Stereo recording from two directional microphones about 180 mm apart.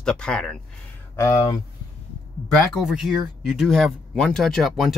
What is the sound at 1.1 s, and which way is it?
Speech, 15° left (ahead or behind).